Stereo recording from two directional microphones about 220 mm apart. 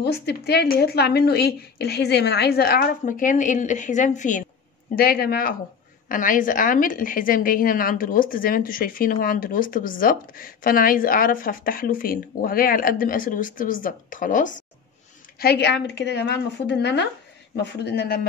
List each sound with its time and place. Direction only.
0.0 s a woman's voice: 50° left (ahead or behind)
15.3 s a woman's voice: 45° left (ahead or behind)